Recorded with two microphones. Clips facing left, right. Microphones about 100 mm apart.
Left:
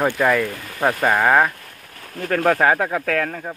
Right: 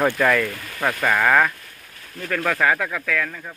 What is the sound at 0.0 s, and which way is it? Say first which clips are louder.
Speech: left 1 dB; 15° left (ahead or behind).